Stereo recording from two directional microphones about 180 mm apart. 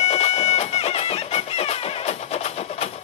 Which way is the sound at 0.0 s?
35° left (ahead or behind).